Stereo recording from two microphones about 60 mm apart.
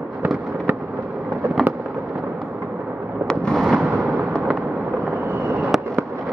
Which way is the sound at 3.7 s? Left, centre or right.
Right.